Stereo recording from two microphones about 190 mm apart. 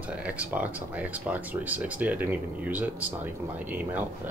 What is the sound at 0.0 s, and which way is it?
Speech, 5° right (ahead or behind).